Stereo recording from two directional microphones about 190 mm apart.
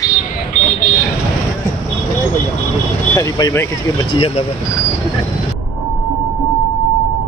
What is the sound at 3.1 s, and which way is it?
Speech, 15° left (ahead or behind).